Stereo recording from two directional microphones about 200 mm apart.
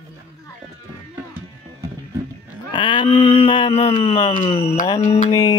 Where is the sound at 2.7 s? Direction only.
25° left (ahead or behind); by 5.3 s 40° left (ahead or behind).